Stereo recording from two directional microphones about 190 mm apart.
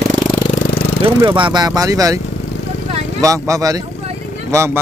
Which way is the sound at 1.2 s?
25° right (ahead or behind).